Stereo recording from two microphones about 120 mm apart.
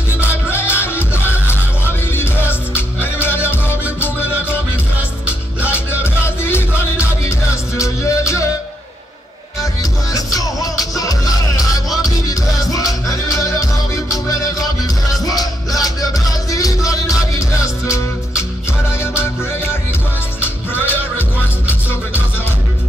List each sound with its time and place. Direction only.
0.5 s music: 20° left (ahead or behind)
2.7 s music: 20° left (ahead or behind)
5.7 s music: 20° left (ahead or behind)
10.1 s music: 30° left (ahead or behind)
15.2 s music: 30° left (ahead or behind)
20.4 s music: 20° left (ahead or behind)